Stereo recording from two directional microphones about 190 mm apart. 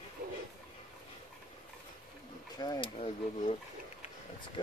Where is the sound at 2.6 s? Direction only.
25° left (ahead or behind).